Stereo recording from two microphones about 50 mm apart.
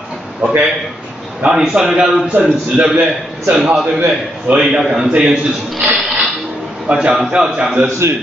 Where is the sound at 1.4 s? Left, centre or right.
Centre.